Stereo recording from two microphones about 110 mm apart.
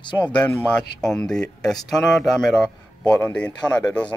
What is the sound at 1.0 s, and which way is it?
Speech, 5° left (ahead or behind).